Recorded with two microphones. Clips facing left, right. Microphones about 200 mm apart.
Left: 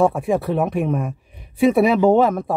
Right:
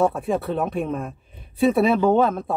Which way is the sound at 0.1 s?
10° left (ahead or behind).